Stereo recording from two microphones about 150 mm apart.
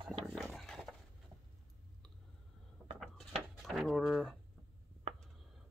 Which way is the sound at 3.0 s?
Centre (ahead or behind).